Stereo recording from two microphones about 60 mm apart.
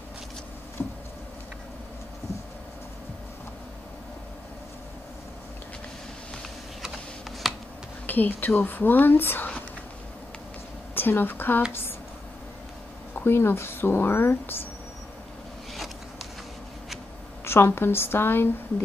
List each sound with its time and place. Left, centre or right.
0.8 s speech: left
6.8 s a sound: centre
8.1 s speech: left
11.0 s speech: left
13.1 s speech: left
17.5 s speech: left